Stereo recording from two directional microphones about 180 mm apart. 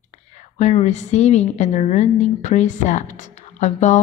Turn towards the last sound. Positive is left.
turn(degrees=40)  # may be behind; listen again after turning